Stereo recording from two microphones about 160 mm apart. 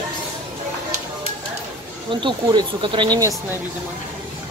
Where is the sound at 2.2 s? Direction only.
30° right (ahead or behind).